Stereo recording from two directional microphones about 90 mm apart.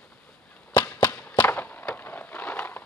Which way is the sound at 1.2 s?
15° left (ahead or behind).